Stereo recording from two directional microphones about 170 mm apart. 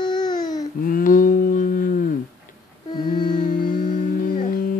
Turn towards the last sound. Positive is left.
turn(degrees=55)  # may be behind; listen again after turning